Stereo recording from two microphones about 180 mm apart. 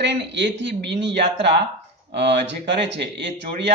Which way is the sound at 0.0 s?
75° right (ahead or behind).